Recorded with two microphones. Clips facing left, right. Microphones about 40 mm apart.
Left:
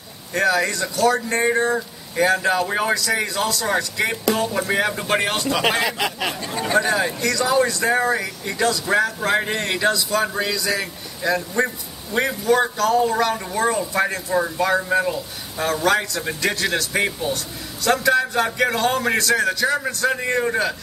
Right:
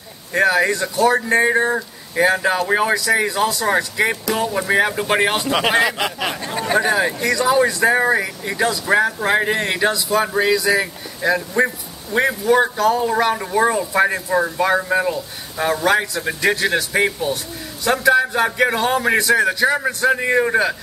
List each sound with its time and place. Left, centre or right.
0.3 s speech: centre
6.4 s speech: right